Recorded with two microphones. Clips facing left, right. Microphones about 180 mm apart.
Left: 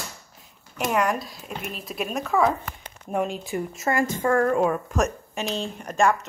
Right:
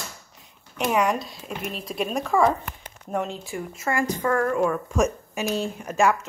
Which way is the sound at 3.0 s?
10° left (ahead or behind).